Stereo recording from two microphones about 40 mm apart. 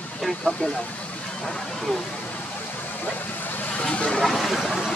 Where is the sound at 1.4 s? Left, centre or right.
Centre.